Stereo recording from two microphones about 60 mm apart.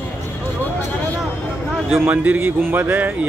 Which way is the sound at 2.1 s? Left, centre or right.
Right.